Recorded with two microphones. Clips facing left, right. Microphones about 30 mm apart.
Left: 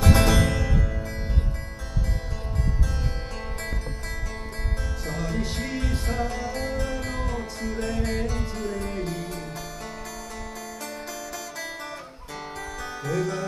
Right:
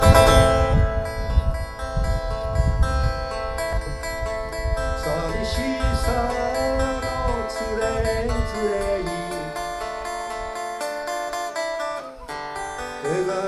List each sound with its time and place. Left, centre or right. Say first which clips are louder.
0.0 s music: right 7 dB; centre
0.4 s music: right 8 dB; right
5.0 s music: right 2 dB; right
7.9 s music: right 5 dB; right
13.0 s music: right 4 dB; right